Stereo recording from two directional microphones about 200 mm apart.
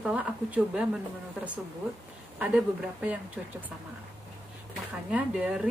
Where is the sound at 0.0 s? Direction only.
5° right (ahead or behind).